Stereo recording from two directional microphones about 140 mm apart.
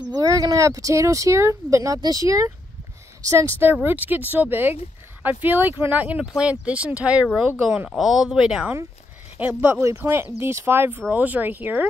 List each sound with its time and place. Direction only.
0.1 s speech: 30° right (ahead or behind); by 11.9 s 10° right (ahead or behind)